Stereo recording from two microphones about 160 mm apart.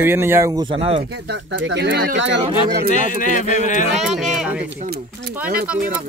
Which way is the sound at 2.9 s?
55° left (ahead or behind).